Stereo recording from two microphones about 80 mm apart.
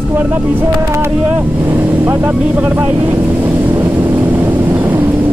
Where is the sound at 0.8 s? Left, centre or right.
Right.